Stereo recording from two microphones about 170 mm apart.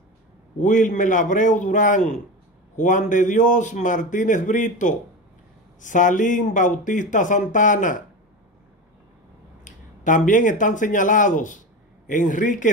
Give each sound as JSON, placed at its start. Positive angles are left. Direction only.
{"t": 0.6, "sound": "a man's voice", "side_deg": 50}
{"t": 9.7, "sound": "a man's voice", "side_deg": 50}